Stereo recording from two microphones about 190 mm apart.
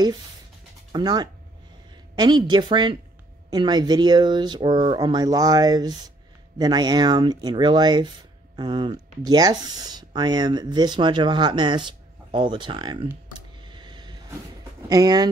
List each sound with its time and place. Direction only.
0.9 s speech: 20° right (ahead or behind)
13.6 s a sound: 25° right (ahead or behind)
14.9 s speech: 20° right (ahead or behind)